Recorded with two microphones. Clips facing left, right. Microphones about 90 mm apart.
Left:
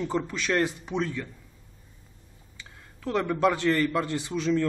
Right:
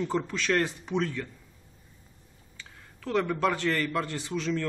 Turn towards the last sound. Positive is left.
turn(degrees=15)  # may be behind; listen again after turning